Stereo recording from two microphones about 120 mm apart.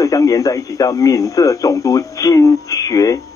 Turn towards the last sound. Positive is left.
turn(degrees=30)  # may be behind; listen again after turning